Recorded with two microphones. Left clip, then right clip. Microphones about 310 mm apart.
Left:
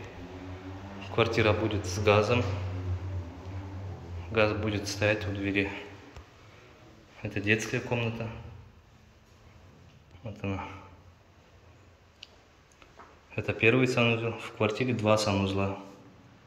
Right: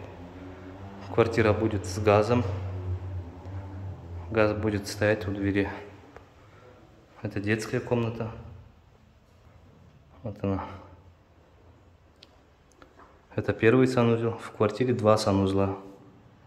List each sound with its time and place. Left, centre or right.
1.1 s speech: centre
4.3 s speech: centre
7.2 s speech: centre
10.2 s speech: centre
13.3 s speech: centre